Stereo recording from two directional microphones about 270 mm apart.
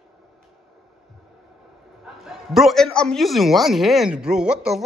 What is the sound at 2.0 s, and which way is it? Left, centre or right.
A man's voice, centre.